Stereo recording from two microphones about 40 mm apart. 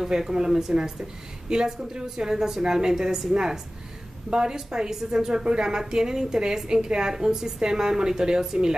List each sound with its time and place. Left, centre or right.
0.0 s a woman's voice: centre